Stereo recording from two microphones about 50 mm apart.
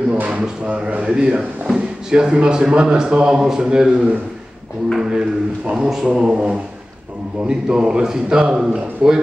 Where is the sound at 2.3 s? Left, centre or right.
Centre.